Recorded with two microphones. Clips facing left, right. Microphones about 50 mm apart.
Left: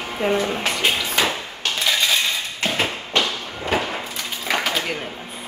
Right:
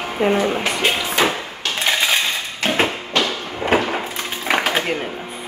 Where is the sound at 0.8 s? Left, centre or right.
Right.